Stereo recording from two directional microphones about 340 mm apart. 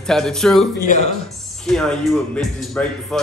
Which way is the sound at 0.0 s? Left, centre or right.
Centre.